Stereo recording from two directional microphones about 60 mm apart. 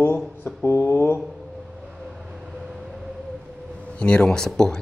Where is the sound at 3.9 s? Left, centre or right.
Centre.